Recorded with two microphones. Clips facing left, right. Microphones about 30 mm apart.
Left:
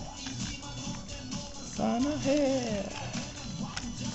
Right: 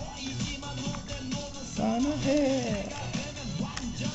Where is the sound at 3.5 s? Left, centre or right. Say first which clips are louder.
Right 3 dB; right.